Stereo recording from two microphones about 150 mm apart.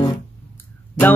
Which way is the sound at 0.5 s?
10° left (ahead or behind).